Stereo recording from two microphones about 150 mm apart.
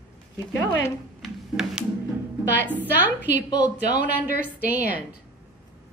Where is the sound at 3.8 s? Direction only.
55° right (ahead or behind).